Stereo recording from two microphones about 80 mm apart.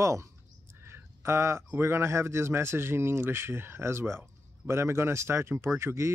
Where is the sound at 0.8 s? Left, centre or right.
Right.